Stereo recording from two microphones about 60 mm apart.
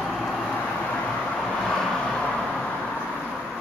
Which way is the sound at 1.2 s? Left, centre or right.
Centre.